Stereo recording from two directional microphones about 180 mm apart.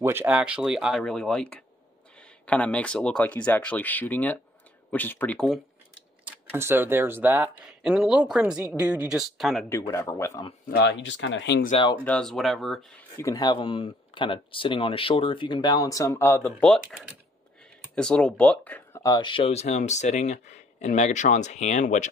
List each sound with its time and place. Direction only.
0.0 s speech: 10° right (ahead or behind); by 5.6 s 5° left (ahead or behind)
6.2 s speech: 15° right (ahead or behind)
9.7 s speech: 15° left (ahead or behind)
10.8 s speech: 80° left
12.0 s speech: 5° left (ahead or behind)
13.2 s speech: 20° left (ahead or behind)
17.9 s speech: 5° left (ahead or behind); by 22.1 s 40° left (ahead or behind)